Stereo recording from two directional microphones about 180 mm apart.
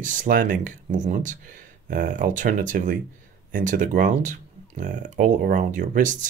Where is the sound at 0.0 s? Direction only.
45° right (ahead or behind).